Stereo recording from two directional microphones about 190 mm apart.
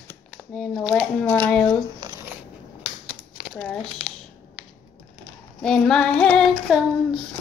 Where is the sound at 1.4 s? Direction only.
10° left (ahead or behind).